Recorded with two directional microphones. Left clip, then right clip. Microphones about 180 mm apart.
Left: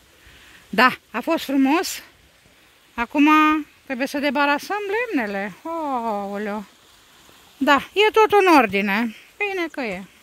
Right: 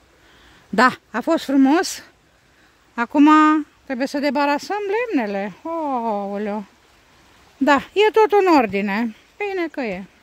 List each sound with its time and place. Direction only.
0.7 s speech: 20° right (ahead or behind)
7.6 s speech: 25° right (ahead or behind)
9.4 s speech: 25° right (ahead or behind)